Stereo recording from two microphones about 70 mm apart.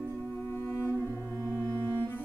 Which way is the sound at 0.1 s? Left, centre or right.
Left.